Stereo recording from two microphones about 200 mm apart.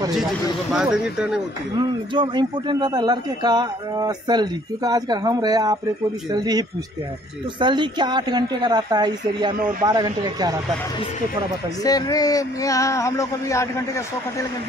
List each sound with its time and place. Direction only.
0.7 s speech: 5° right (ahead or behind)
1.8 s speech: 20° right (ahead or behind)
7.6 s speech: 25° right (ahead or behind)
11.8 s speech: 20° left (ahead or behind)